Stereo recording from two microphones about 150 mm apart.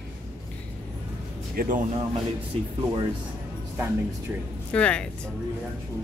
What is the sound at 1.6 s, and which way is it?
Speech, 70° right (ahead or behind).